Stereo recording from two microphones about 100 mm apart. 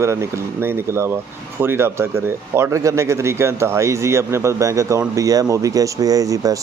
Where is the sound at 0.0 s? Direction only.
25° right (ahead or behind).